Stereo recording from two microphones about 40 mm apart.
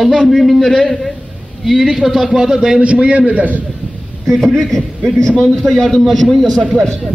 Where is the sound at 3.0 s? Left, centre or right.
Right.